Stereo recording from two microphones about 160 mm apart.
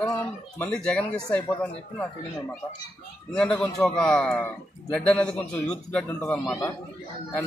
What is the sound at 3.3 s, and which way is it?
A man's voice, 5° left (ahead or behind).